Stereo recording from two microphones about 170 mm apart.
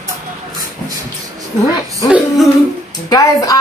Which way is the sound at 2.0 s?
5° right (ahead or behind).